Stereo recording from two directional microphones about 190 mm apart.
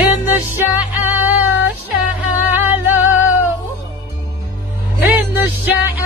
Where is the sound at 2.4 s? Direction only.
10° right (ahead or behind).